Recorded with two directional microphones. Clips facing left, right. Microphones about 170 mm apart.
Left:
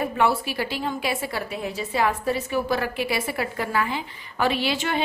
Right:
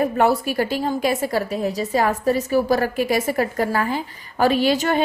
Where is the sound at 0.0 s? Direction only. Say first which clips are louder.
Right 5 dB; 45° right (ahead or behind).